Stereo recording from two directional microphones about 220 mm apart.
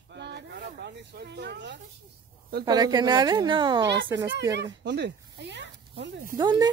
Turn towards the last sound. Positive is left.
turn(degrees=-20)  # may be behind; listen again after turning